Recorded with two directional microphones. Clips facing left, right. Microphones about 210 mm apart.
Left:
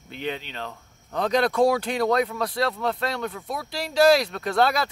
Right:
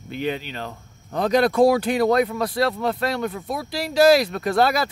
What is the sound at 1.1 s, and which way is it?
Speech, 5° right (ahead or behind).